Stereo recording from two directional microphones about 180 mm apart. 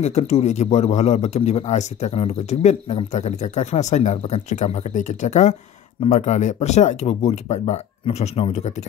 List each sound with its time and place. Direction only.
0.0 s a man's voice: 35° left (ahead or behind)